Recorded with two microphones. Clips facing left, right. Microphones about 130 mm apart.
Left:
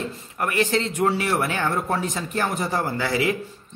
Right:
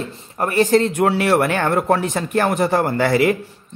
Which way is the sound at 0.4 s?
35° right (ahead or behind).